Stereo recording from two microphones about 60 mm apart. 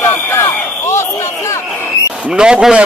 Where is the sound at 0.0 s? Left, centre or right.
Left.